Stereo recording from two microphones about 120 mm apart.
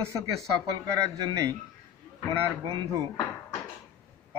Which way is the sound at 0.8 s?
30° right (ahead or behind).